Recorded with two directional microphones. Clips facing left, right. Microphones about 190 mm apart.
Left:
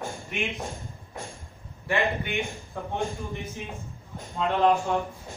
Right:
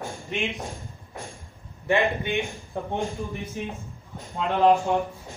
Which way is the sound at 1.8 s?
20° right (ahead or behind).